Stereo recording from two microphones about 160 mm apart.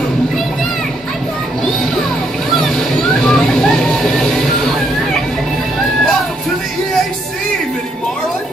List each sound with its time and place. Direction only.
2.5 s vehicle: centre (ahead or behind)